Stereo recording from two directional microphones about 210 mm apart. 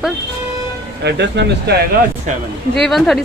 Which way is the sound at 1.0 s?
55° right (ahead or behind).